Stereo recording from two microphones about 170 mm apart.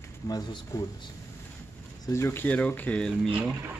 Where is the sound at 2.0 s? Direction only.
15° left (ahead or behind).